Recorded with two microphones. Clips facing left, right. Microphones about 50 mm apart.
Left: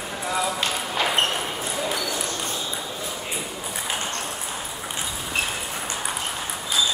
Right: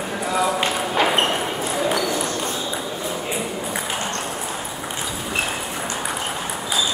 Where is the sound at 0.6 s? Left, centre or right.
Right.